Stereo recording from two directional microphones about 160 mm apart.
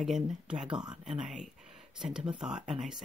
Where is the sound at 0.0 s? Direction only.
5° right (ahead or behind).